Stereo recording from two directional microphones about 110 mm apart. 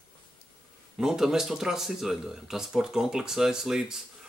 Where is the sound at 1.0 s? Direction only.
5° right (ahead or behind).